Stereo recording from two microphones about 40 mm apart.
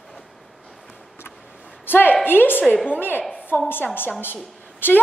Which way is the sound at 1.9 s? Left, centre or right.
Left.